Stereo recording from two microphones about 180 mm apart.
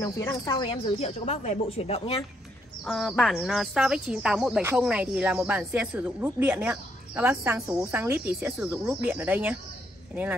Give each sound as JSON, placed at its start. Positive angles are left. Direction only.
{"t": 0.0, "sound": "speech", "side_deg": 20}
{"t": 2.8, "sound": "speech", "side_deg": 0}